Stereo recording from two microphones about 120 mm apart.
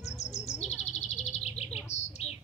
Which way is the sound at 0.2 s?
65° left (ahead or behind).